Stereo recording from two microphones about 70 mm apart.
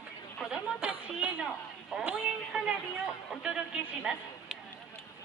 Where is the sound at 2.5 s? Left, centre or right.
Centre.